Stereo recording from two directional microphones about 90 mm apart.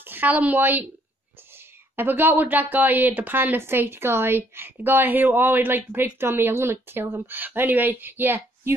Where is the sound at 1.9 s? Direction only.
20° right (ahead or behind).